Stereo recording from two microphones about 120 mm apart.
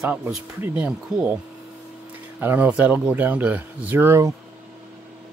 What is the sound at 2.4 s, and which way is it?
Speech, 15° right (ahead or behind).